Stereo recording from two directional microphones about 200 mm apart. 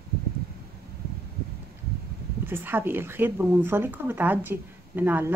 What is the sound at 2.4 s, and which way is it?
A woman's voice, 10° right (ahead or behind).